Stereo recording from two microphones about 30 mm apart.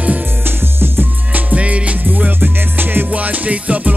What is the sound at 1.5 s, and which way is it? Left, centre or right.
Music, right.